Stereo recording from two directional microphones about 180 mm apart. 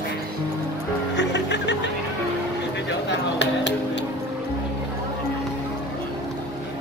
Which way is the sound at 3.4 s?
80° left.